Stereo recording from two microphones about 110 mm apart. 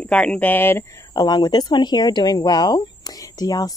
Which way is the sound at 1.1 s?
40° left (ahead or behind).